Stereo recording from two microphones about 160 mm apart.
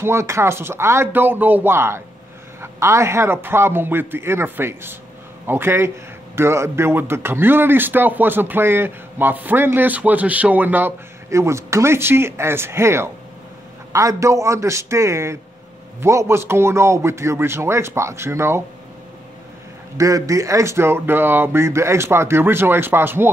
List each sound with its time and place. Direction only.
0.0 s speech: 15° right (ahead or behind)
20.0 s speech: 20° right (ahead or behind)